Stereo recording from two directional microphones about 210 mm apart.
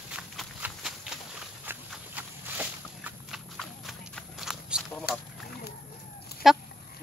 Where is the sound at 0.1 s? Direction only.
5° right (ahead or behind).